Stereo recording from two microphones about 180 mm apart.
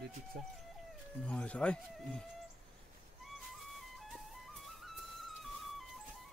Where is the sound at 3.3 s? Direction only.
Centre (ahead or behind).